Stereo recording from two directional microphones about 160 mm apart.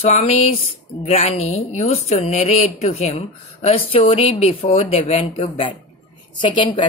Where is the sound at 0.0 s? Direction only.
40° left (ahead or behind).